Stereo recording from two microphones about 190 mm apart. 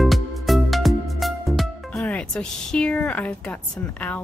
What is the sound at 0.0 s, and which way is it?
Music, centre (ahead or behind).